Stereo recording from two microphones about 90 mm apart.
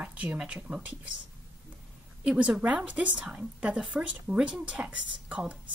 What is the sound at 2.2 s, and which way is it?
Speech, 15° right (ahead or behind).